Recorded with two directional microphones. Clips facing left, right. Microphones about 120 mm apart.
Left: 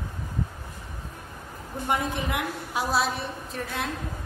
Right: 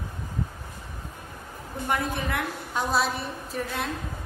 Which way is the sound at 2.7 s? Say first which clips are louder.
Even; 5° left (ahead or behind).